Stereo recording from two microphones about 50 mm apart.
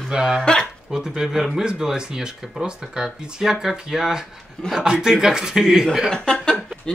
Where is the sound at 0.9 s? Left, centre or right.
Centre.